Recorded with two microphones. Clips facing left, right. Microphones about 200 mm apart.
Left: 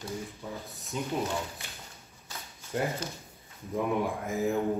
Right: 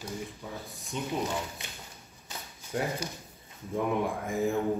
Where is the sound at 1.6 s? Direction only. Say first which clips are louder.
Right 1 dB; 20° right (ahead or behind).